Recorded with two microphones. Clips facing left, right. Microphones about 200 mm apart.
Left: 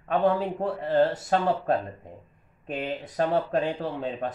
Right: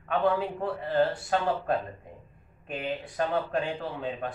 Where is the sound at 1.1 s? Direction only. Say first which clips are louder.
Left 3 dB; 40° left (ahead or behind).